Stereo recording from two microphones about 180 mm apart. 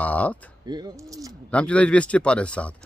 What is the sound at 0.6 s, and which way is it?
Speech, 20° right (ahead or behind).